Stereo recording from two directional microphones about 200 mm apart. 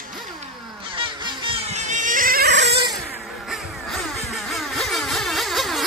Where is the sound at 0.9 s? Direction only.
25° right (ahead or behind); by 2.8 s 55° right (ahead or behind).